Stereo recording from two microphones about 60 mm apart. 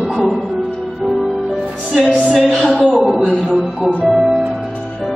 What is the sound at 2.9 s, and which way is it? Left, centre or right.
Speech, centre.